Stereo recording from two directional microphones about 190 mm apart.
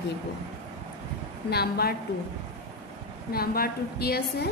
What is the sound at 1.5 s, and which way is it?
Speech, 55° left (ahead or behind).